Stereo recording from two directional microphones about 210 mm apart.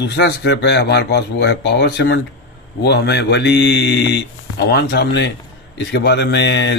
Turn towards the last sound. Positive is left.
turn(degrees=55)  # may be behind; listen again after turning